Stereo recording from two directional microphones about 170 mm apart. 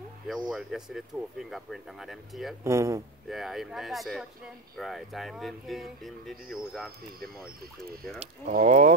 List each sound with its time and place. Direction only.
0.3 s speech: centre (ahead or behind)
2.6 s speech: 15° right (ahead or behind)
3.3 s speech: centre (ahead or behind)
8.2 s speech: 45° right (ahead or behind)